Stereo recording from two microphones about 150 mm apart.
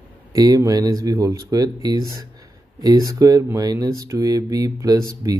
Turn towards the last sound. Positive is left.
turn(degrees=-25)  # may be behind; listen again after turning